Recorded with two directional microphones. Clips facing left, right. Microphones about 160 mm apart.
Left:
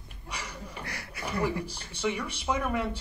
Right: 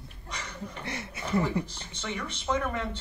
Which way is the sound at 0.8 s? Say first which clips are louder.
Right 4 dB; 25° right (ahead or behind).